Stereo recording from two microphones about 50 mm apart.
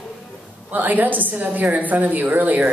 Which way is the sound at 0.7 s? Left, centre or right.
Right.